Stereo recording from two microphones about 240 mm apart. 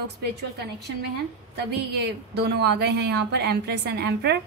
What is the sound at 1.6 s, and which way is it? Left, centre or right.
Speech, right.